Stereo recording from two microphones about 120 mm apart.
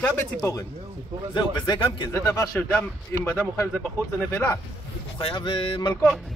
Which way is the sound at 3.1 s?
20° left (ahead or behind).